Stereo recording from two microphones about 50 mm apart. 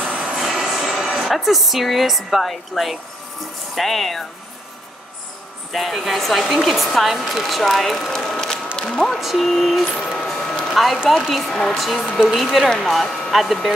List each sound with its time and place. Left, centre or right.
0.1 s music: right
0.5 s music: centre
1.3 s speech: centre
5.7 s speech: centre
9.0 s speech: centre
9.8 s a sound: centre
10.7 s speech: centre